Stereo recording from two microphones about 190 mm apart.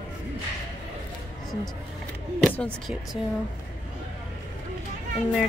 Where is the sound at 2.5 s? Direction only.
5° left (ahead or behind).